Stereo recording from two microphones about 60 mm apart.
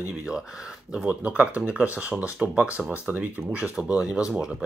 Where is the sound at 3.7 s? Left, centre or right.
Centre.